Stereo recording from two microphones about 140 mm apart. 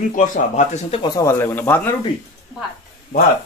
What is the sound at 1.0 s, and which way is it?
Speech, 20° left (ahead or behind).